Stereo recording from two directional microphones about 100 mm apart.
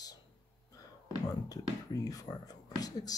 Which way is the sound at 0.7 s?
35° left (ahead or behind).